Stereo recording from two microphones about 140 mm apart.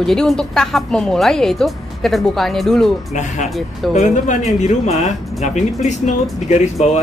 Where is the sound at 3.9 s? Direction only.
60° left (ahead or behind).